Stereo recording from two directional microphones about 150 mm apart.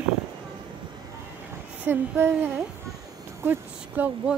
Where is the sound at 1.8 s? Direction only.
15° right (ahead or behind).